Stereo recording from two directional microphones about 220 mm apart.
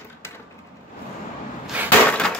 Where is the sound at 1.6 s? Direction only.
5° right (ahead or behind).